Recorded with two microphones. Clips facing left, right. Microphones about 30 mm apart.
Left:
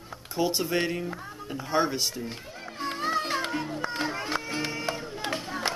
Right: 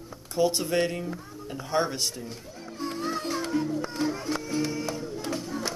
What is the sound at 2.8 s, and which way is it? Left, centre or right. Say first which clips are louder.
Music: left 3 dB; left.